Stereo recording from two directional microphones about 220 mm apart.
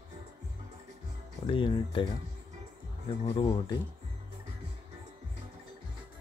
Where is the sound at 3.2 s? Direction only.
25° left (ahead or behind).